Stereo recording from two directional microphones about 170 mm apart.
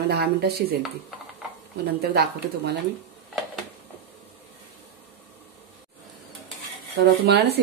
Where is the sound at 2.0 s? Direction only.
70° right (ahead or behind).